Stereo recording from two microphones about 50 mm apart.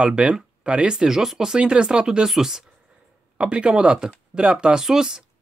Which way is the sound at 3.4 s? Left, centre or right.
Centre.